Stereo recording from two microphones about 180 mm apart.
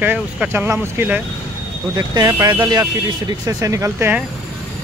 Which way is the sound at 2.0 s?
20° right (ahead or behind).